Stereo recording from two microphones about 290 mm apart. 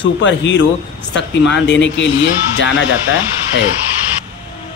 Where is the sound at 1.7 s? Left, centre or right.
Left.